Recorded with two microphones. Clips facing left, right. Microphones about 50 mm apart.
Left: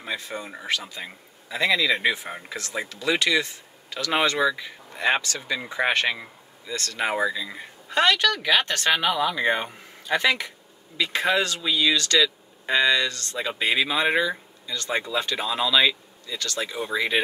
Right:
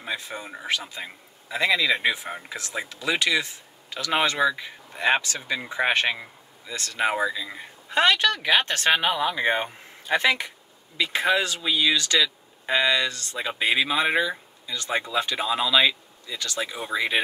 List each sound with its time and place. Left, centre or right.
0.0 s speech: centre
5.2 s speech: right
5.7 s speech: centre
6.1 s a sound: centre
7.0 s speech: centre
7.9 s speech: right
11.0 s speech: centre